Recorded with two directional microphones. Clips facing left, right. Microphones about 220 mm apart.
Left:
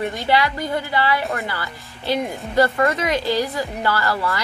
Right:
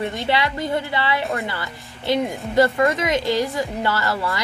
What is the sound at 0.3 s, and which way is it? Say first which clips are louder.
A woman's voice: left 2 dB; 25° right (ahead or behind).